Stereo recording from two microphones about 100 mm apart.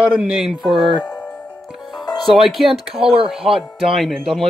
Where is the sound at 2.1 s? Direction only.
Centre (ahead or behind).